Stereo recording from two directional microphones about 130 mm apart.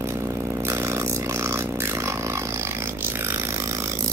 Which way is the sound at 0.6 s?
20° right (ahead or behind).